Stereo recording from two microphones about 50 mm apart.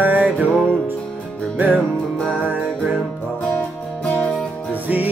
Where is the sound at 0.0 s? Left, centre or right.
Right.